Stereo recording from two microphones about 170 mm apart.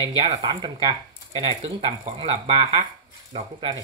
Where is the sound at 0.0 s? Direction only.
30° right (ahead or behind).